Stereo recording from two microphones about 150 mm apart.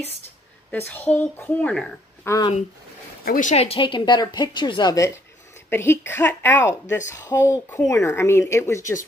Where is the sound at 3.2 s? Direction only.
60° left (ahead or behind).